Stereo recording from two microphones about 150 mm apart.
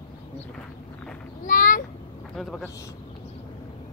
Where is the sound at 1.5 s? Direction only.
65° left (ahead or behind).